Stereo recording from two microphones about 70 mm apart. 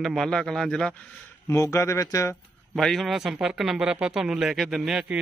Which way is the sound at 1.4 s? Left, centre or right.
Left.